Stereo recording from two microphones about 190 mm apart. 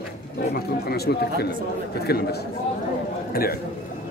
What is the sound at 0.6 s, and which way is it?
A man's voice, 55° left (ahead or behind).